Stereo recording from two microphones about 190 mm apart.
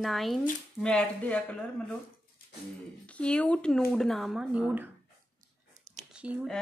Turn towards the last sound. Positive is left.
turn(degrees=-5)  # may be behind; listen again after turning